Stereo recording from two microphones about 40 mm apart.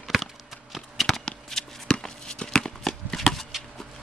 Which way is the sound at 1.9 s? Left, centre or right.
Left.